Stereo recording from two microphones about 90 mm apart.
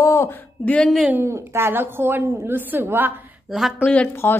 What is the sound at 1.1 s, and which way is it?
A woman's voice, 30° right (ahead or behind).